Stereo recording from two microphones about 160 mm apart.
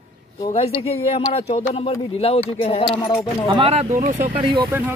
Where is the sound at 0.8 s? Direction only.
40° left (ahead or behind).